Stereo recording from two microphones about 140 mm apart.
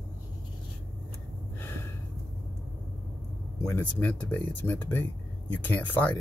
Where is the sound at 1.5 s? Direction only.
15° left (ahead or behind).